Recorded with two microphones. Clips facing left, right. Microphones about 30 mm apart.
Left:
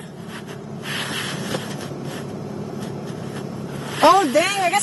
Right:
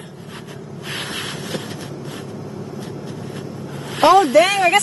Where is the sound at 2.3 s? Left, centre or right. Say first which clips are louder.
Left 1 dB; centre.